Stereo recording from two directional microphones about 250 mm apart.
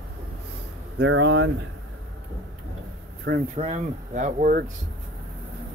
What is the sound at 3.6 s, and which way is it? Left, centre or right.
Speech, right.